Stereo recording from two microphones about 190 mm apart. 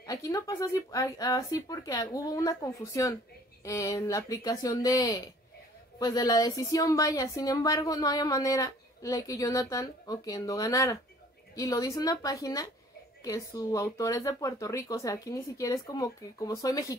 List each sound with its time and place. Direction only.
0.0 s a woman's voice: 15° left (ahead or behind)